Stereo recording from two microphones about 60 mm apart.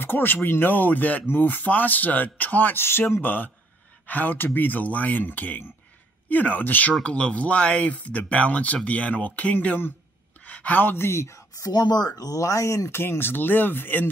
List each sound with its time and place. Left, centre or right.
0.0 s speech: left
7.0 s speech: centre; by 11.4 s left
11.6 s speech: left
13.0 s speech: left